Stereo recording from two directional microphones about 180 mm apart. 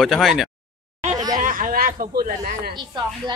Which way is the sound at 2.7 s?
25° right (ahead or behind).